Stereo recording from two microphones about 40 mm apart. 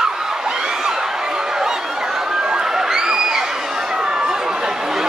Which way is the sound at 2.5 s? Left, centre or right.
Centre.